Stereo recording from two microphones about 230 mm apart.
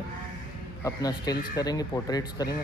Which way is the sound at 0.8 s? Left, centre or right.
Centre.